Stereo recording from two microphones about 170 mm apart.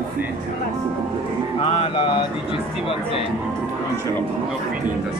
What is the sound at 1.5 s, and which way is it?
Speech, 35° left (ahead or behind).